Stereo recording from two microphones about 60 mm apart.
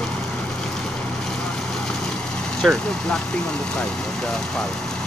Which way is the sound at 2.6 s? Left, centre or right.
Centre.